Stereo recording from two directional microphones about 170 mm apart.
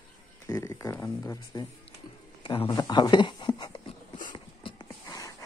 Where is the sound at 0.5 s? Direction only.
20° left (ahead or behind).